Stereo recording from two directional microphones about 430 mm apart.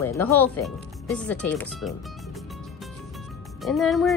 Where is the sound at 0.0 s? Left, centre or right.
Centre.